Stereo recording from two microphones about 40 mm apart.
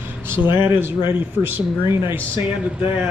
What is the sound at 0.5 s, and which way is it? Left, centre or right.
A man's voice, right.